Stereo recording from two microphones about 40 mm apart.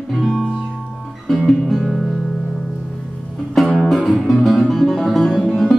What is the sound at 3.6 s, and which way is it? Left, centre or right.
Music, centre.